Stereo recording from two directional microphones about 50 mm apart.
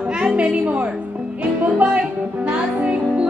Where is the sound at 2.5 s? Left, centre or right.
Right.